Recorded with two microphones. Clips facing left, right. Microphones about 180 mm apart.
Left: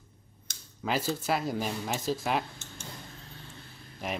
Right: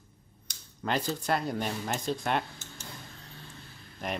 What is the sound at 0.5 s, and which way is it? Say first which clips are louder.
Speech: even; 5° left (ahead or behind).